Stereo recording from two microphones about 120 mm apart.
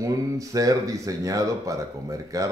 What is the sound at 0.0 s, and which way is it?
A man's voice, 30° right (ahead or behind).